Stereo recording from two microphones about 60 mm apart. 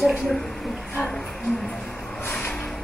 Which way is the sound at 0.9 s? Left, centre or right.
Centre.